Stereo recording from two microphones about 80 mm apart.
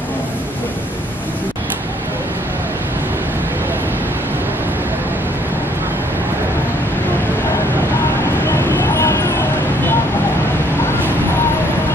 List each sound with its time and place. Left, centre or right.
8.5 s vehicle: left